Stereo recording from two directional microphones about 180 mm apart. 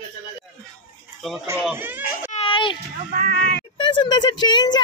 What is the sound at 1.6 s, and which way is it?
Speech, 10° right (ahead or behind).